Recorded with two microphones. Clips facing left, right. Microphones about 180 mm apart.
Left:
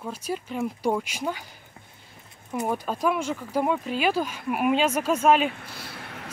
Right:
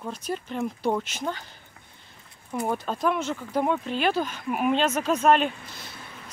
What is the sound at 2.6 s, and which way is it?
Speech, 10° left (ahead or behind).